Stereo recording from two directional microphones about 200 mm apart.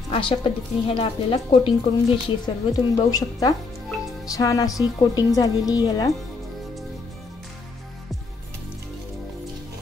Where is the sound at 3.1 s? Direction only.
20° left (ahead or behind).